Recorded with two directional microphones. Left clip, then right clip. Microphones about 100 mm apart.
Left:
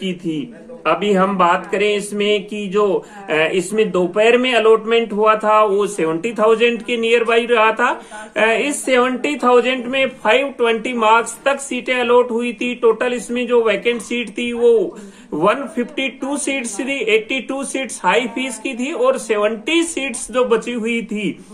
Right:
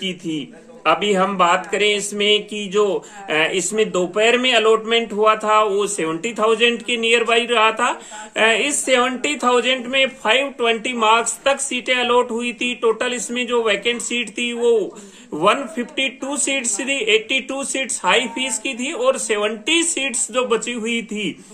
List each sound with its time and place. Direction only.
0.0 s speech: 25° right (ahead or behind)